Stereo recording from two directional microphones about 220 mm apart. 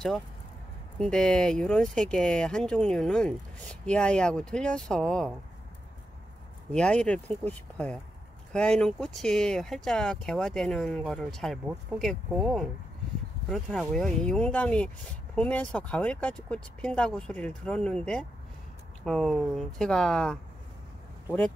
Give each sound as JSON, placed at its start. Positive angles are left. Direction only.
{"t": 0.9, "sound": "speech", "side_deg": 5}
{"t": 6.7, "sound": "speech", "side_deg": 5}